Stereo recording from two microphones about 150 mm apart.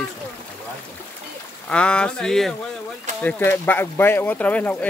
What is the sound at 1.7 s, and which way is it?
Speech, 5° left (ahead or behind).